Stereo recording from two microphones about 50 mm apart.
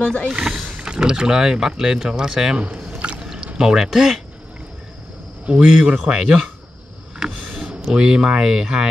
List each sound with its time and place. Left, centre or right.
0.0 s speech: left
0.3 s speech: centre
2.5 s a man's voice: right
3.2 s pour: centre
3.5 s speech: centre
5.4 s a man's voice: right
7.9 s speech: centre